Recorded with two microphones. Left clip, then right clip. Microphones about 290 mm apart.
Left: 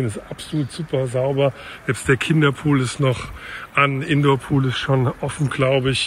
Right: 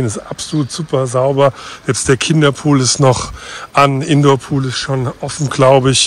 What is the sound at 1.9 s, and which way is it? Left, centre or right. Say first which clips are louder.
Speech: right 5 dB; centre.